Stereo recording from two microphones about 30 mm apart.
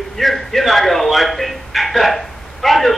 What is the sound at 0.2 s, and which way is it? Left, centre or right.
A man's voice, centre.